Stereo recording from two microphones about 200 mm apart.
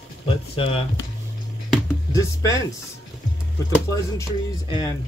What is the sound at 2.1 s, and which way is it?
Speech, 15° left (ahead or behind).